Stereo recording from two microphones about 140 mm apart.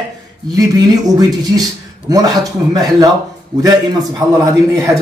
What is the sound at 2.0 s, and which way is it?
A man's voice, 25° right (ahead or behind).